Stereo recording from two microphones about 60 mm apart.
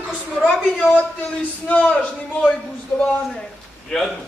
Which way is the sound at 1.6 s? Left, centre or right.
Left.